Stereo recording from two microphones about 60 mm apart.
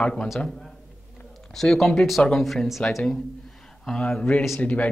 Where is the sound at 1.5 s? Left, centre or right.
Centre.